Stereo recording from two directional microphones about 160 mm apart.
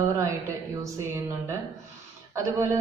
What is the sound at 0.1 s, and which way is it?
Speech, 20° right (ahead or behind).